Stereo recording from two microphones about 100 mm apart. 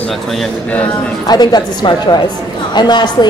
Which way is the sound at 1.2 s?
45° left (ahead or behind).